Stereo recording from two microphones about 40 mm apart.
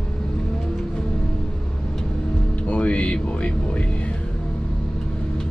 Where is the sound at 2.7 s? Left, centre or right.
Left.